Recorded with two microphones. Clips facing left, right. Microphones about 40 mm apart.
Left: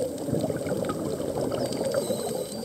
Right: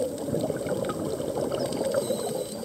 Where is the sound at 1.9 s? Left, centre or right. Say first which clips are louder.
Even; centre.